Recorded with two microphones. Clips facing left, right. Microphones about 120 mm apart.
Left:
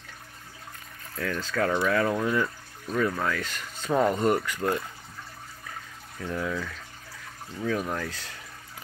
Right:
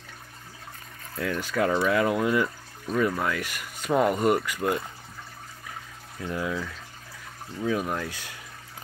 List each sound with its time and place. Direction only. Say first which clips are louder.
1.1 s speech: right 2 dB; 15° right (ahead or behind)
6.2 s speech: right 1 dB; 10° right (ahead or behind)